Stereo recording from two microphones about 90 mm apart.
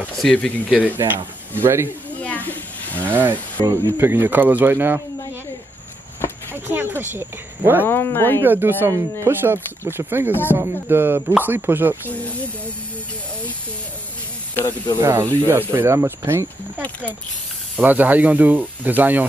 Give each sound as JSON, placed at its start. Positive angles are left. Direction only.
{"t": 0.2, "sound": "speech", "side_deg": 10}
{"t": 0.7, "sound": "speech", "side_deg": -15}
{"t": 2.2, "sound": "a sound", "side_deg": 20}
{"t": 3.1, "sound": "speech", "side_deg": -20}
{"t": 6.5, "sound": "speech", "side_deg": -25}
{"t": 7.8, "sound": "speech", "side_deg": 25}
{"t": 8.4, "sound": "speech", "side_deg": -25}
{"t": 12.1, "sound": "speech", "side_deg": 15}
{"t": 14.5, "sound": "speech", "side_deg": 25}
{"t": 15.0, "sound": "speech", "side_deg": -30}
{"t": 17.7, "sound": "speech", "side_deg": -20}